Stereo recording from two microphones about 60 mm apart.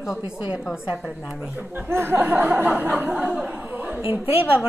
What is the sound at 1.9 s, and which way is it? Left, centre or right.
Chuckle, right.